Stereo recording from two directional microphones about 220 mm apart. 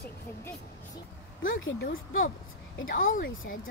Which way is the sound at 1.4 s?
60° left (ahead or behind).